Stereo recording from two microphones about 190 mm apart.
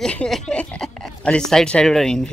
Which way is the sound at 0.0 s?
5° left (ahead or behind).